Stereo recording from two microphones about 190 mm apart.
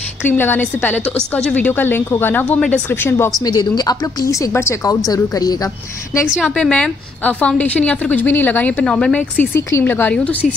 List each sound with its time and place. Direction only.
0.2 s a woman's voice: 10° left (ahead or behind)
6.3 s a woman's voice: 5° left (ahead or behind)